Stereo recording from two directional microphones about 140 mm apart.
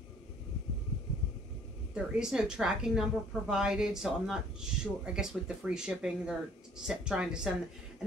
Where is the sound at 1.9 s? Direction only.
5° right (ahead or behind).